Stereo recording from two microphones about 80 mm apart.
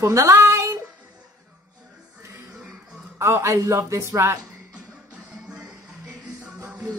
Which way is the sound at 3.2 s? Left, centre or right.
Right.